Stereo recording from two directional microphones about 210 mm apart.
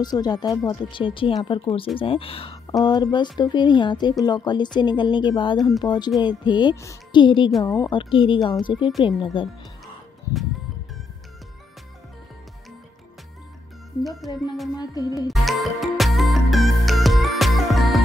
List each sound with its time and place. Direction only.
0.0 s speech: 20° left (ahead or behind)
14.0 s speech: centre (ahead or behind)
14.8 s music: 15° left (ahead or behind)
15.2 s music: centre (ahead or behind)